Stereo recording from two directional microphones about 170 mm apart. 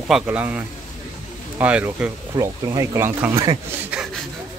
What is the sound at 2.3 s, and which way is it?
Speech, 20° right (ahead or behind).